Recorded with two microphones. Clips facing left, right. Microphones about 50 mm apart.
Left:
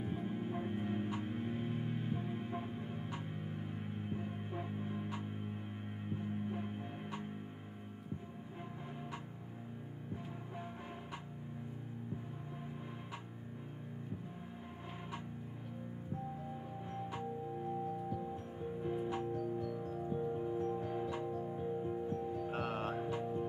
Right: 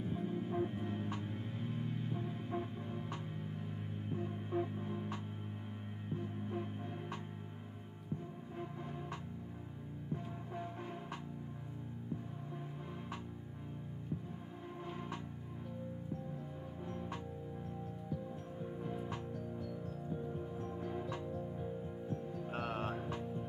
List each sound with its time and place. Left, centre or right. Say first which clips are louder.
0.0 s music: even; left
18.9 s music: left 9 dB; centre
19.8 s music: left 4 dB; left
20.2 s music: left 6 dB; centre
22.0 s music: left 4 dB; centre
23.0 s music: left 4 dB; centre